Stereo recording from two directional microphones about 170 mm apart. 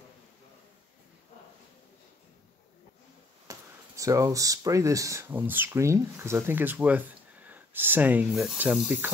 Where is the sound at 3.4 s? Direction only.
20° right (ahead or behind).